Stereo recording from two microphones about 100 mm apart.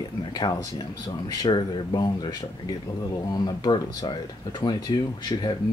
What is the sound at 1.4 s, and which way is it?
Speech, 45° left (ahead or behind).